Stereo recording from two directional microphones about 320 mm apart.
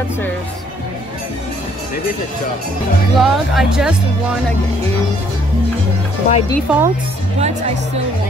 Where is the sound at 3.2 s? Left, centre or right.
Centre.